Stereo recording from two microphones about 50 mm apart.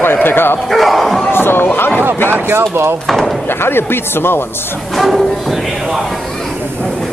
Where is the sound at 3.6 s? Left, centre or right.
Left.